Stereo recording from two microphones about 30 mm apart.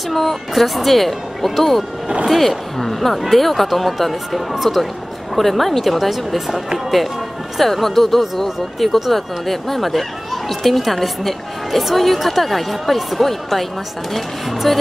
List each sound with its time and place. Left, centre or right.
0.1 s speech: centre
7.5 s speech: centre